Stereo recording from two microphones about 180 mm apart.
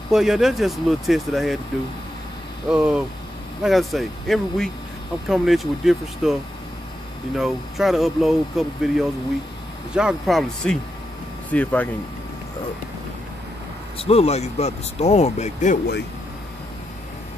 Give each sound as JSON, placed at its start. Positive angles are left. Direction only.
{"t": 0.1, "sound": "speech", "side_deg": 0}
{"t": 2.7, "sound": "speech", "side_deg": -5}
{"t": 7.3, "sound": "speech", "side_deg": 0}
{"t": 13.9, "sound": "speech", "side_deg": 35}